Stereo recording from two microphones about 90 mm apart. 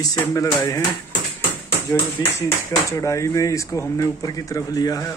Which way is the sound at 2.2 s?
45° left (ahead or behind).